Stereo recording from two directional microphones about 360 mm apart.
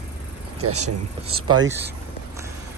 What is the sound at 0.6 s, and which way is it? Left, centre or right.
Speech, right.